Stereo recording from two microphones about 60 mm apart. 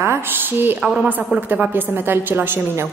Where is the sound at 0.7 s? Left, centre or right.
Centre.